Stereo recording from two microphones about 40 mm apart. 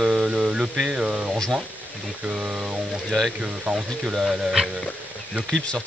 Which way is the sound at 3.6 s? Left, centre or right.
Centre.